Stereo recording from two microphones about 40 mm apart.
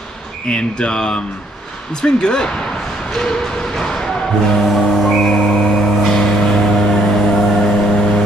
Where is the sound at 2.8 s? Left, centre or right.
Centre.